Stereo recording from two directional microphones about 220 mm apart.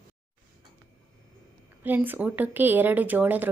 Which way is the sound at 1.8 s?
10° right (ahead or behind).